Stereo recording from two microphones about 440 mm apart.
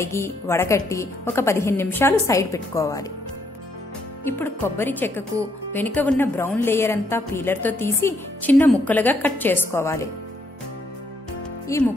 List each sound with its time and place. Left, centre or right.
0.0 s a woman's voice: centre
4.3 s a woman's voice: centre
11.6 s speech: centre